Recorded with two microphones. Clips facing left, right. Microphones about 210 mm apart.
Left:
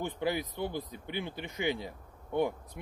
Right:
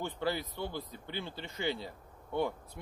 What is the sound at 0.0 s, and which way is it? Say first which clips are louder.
Speech: left 2 dB; 15° left (ahead or behind).